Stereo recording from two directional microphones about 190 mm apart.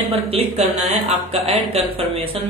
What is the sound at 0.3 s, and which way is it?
A woman's voice, 35° right (ahead or behind).